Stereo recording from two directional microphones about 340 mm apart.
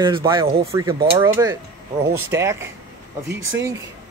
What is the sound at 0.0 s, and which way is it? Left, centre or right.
Speech, centre.